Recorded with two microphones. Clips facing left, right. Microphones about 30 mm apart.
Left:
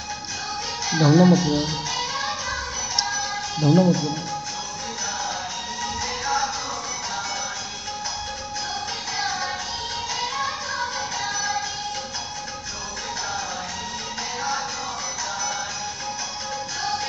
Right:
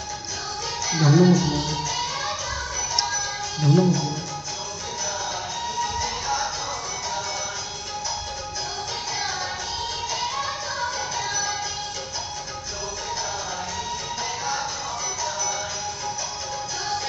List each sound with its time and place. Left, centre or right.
0.9 s music: centre
1.5 s speech: left
3.5 s speech: left
5.8 s music: left
11.1 s music: left